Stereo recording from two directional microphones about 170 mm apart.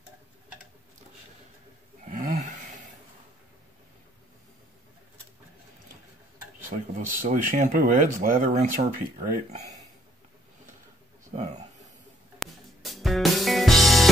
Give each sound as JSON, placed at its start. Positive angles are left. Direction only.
{"t": 2.0, "sound": "a sound", "side_deg": -50}
{"t": 6.7, "sound": "speech", "side_deg": -50}
{"t": 11.3, "sound": "speech", "side_deg": -40}
{"t": 12.4, "sound": "music", "side_deg": 0}